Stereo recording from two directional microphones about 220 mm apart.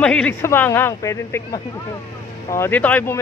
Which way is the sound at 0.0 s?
5° left (ahead or behind).